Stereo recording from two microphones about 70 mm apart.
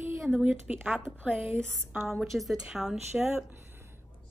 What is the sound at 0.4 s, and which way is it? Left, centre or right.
Speech, right.